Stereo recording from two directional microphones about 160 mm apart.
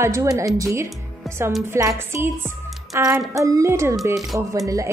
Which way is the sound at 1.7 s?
15° right (ahead or behind).